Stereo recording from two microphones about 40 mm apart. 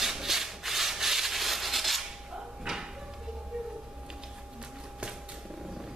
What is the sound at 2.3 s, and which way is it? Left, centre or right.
Drawer open or close, centre.